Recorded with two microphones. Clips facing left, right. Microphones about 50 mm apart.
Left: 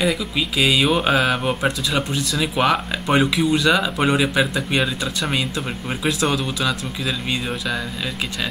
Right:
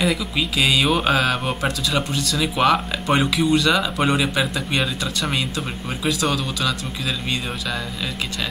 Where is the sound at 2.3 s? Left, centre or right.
Centre.